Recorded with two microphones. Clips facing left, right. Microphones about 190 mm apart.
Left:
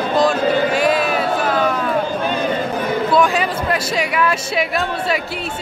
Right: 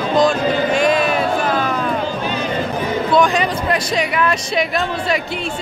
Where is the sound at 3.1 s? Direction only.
5° left (ahead or behind).